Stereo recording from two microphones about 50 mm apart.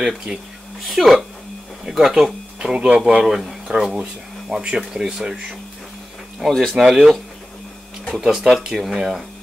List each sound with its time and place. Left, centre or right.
0.9 s speech: centre
3.3 s speech: centre
6.4 s speech: centre
8.2 s speech: centre